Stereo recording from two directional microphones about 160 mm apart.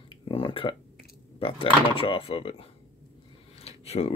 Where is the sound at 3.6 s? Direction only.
40° left (ahead or behind).